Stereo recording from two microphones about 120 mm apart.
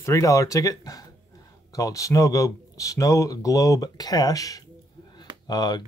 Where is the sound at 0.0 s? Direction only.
25° left (ahead or behind).